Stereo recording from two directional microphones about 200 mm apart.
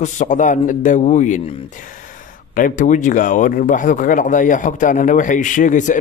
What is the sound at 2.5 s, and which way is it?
Speech, 40° left (ahead or behind).